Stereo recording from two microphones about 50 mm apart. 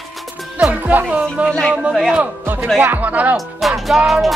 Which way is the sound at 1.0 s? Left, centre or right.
Right.